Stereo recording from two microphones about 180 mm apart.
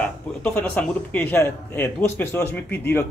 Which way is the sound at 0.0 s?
10° left (ahead or behind).